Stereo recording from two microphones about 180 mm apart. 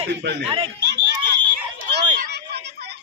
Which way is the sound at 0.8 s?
70° right (ahead or behind).